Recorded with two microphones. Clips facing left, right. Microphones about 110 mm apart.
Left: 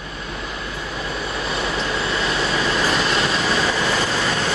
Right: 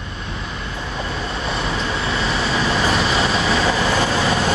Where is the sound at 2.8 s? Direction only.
Centre (ahead or behind).